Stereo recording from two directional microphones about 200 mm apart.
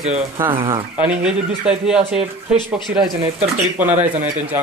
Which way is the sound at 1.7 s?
5° right (ahead or behind).